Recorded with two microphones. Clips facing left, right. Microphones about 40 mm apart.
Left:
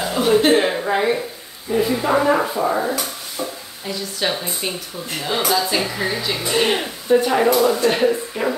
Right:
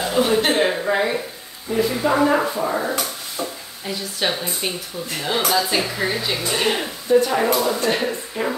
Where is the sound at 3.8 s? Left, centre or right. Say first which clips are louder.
Left 1 dB; centre.